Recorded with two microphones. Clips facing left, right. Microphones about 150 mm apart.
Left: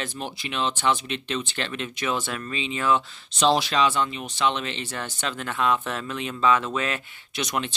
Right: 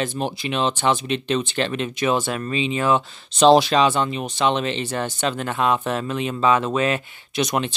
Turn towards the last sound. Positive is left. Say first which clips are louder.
# right 8 dB
turn(degrees=-20)  # may be behind; listen again after turning